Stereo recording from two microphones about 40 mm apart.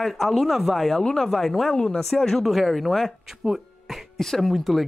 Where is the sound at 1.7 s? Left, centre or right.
Left.